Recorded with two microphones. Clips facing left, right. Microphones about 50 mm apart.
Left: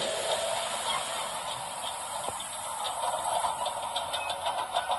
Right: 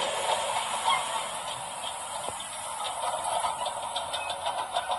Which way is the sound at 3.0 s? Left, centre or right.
Centre.